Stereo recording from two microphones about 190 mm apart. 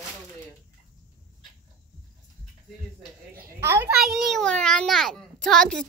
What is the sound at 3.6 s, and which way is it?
Speech, 15° right (ahead or behind).